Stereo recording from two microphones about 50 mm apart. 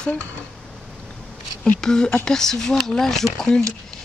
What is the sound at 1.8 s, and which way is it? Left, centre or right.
Speech, centre.